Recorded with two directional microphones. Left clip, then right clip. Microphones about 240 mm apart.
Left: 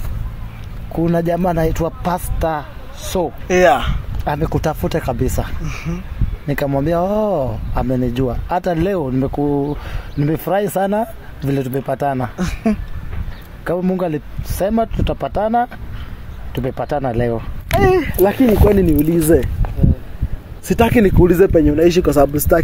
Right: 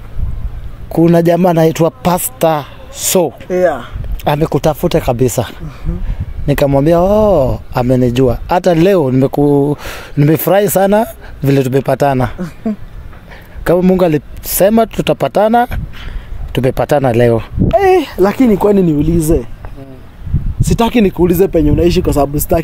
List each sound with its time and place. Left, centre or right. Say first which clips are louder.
0.9 s speech: right 8 dB; right
3.4 s speech: left 1 dB; left
4.2 s speech: right 7 dB; right
12.4 s speech: left 1 dB; left
13.7 s speech: right 9 dB; right
20.6 s speech: right 1 dB; right
21.9 s speech: even; right